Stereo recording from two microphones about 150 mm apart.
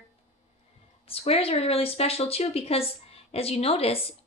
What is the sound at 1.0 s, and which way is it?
Speech, 40° left (ahead or behind).